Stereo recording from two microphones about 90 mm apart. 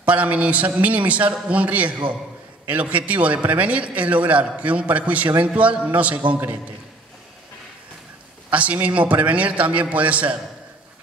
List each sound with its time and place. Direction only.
0.0 s a man's voice: 15° right (ahead or behind)
8.5 s a man's voice: 15° right (ahead or behind)